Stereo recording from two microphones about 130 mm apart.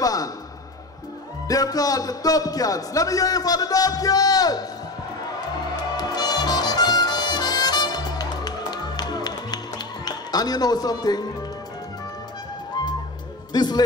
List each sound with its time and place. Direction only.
0.0 s speech: 30° left (ahead or behind)
1.5 s speech: 30° left (ahead or behind)
5.9 s music: 30° left (ahead or behind)
12.8 s music: 35° left (ahead or behind)
13.5 s speech: 30° left (ahead or behind)